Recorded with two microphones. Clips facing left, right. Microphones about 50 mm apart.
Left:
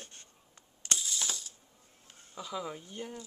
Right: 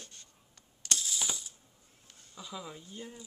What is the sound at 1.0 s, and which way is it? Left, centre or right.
Ratchet, centre.